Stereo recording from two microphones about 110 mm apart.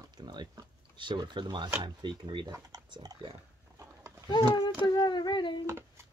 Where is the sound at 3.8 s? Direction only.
30° right (ahead or behind).